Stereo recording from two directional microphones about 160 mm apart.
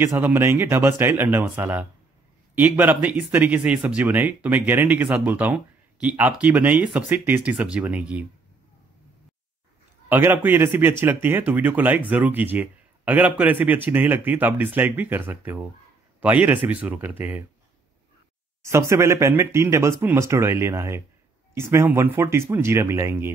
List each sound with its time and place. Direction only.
0.0 s speech: 15° right (ahead or behind)
10.0 s speech: 15° right (ahead or behind)
18.6 s speech: 15° right (ahead or behind)